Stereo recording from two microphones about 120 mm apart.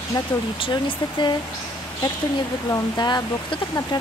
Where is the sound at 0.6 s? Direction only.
40° left (ahead or behind).